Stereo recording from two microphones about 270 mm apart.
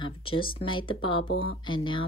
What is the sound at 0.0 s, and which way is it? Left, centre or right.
Speech, centre.